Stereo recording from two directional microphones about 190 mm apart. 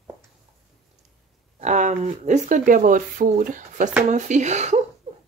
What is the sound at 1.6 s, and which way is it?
Speech, 40° right (ahead or behind).